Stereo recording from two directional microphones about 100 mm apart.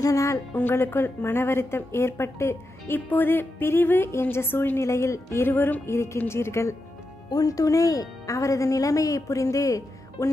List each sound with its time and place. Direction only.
0.0 s a woman's voice: 35° left (ahead or behind)
0.6 s a woman's voice: 20° left (ahead or behind)
7.2 s a woman's voice: 40° left (ahead or behind)